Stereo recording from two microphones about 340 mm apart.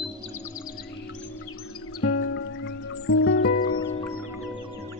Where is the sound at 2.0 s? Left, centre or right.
Left.